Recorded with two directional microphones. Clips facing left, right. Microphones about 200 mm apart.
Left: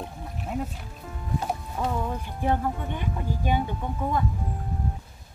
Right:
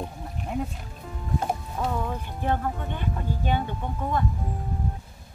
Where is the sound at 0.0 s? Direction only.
Centre (ahead or behind).